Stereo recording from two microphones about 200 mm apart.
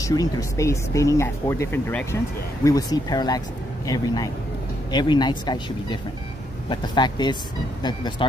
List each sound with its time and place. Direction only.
0.0 s speech: 15° left (ahead or behind)